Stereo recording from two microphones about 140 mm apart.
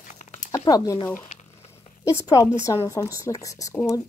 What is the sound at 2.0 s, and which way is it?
Speech, 25° left (ahead or behind).